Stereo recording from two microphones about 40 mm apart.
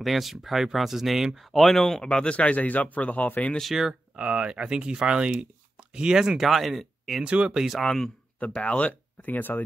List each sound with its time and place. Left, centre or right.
0.0 s speech: centre
1.5 s speech: centre
2.3 s speech: left
4.2 s speech: right
6.3 s speech: centre
7.2 s speech: right
7.8 s speech: centre
8.5 s speech: left
9.2 s speech: left